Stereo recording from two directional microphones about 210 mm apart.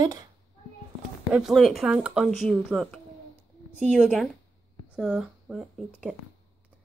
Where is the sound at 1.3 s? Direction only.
Centre (ahead or behind).